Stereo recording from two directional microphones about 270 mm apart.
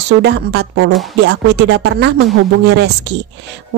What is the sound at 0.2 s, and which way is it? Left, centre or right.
Speech, right.